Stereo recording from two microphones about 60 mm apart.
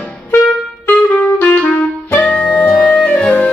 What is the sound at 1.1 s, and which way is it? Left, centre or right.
Music, left.